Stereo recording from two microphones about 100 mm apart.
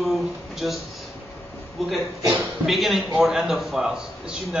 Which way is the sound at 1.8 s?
Centre (ahead or behind).